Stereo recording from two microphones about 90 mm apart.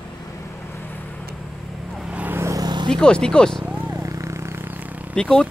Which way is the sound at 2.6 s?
55° right (ahead or behind).